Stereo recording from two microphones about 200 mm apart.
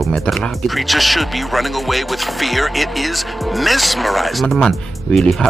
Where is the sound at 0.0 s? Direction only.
Centre (ahead or behind).